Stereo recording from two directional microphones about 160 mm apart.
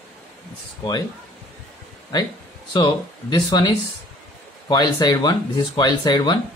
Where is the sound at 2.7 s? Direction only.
30° left (ahead or behind).